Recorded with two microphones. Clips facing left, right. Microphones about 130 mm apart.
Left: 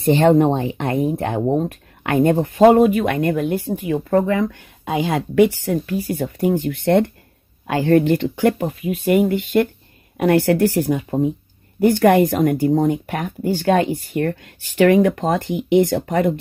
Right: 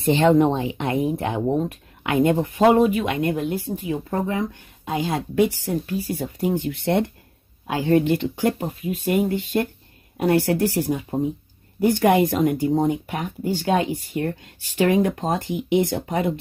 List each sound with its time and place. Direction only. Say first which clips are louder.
0.0 s speech: left 3 dB; 45° left (ahead or behind); by 5.9 s 70° left (ahead or behind)
5.9 s speech: left 4 dB; 60° left (ahead or behind)